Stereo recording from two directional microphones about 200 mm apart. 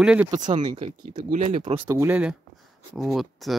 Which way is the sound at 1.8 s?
10° right (ahead or behind).